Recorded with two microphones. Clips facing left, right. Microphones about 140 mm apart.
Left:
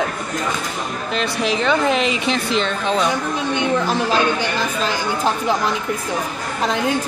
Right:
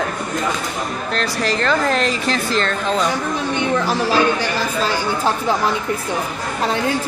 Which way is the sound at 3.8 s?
20° left (ahead or behind).